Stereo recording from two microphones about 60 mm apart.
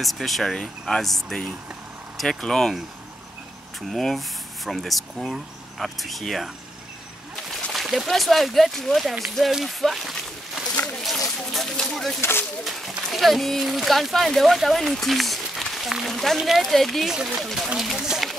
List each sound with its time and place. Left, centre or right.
0.0 s speech: centre
3.9 s speech: centre
7.7 s speech: centre
11.1 s a sound: centre
12.2 s speech: left
12.6 s speech: centre
17.1 s speech: centre